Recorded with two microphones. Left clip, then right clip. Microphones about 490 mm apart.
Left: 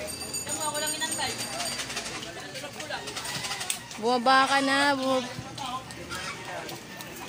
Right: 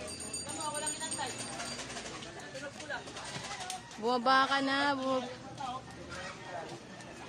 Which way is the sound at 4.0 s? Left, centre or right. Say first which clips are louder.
Left 6 dB; right.